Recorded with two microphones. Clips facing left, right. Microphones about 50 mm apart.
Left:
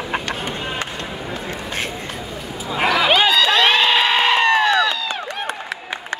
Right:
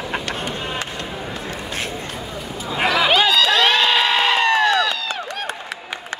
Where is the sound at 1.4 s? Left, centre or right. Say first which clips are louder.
Left 2 dB; left.